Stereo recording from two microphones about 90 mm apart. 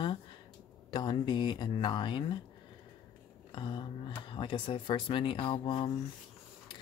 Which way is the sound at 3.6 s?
60° left (ahead or behind).